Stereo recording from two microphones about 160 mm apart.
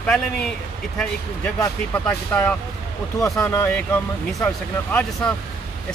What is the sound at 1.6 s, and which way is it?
Speech, 10° left (ahead or behind).